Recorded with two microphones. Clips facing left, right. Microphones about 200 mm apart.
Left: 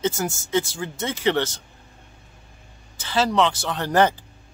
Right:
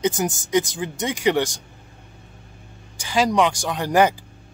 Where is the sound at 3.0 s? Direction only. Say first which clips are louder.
Right 2 dB; 15° right (ahead or behind).